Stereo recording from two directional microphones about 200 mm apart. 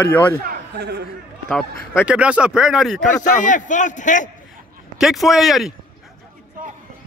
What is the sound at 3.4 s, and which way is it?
Speech, 40° left (ahead or behind).